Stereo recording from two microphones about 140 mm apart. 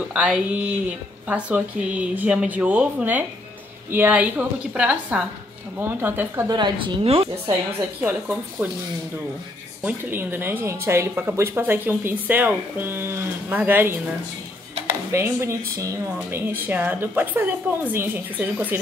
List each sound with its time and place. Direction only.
0.1 s speech: 10° right (ahead or behind)
6.4 s speech: 30° right (ahead or behind)
8.0 s speech: 10° right (ahead or behind)
9.8 s speech: 15° right (ahead or behind)